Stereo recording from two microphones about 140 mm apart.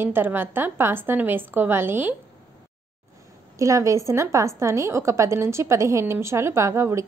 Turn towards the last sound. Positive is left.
turn(degrees=-20)  # may be behind; listen again after turning